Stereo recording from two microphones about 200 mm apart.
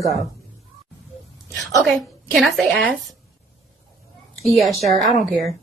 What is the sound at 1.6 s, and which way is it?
Speech, centre (ahead or behind).